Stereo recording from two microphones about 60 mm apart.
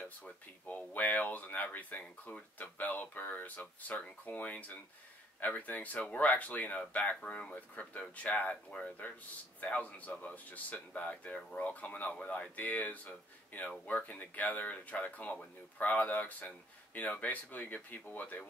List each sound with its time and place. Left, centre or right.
0.2 s speech: left